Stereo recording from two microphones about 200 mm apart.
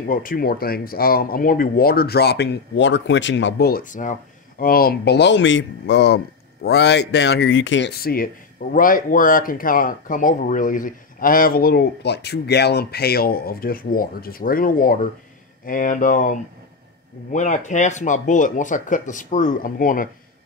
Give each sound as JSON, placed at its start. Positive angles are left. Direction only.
{"t": 0.1, "sound": "speech", "side_deg": 45}